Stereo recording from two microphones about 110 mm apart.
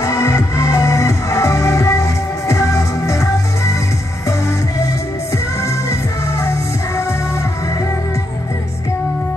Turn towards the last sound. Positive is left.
turn(degrees=30)  # may be behind; listen again after turning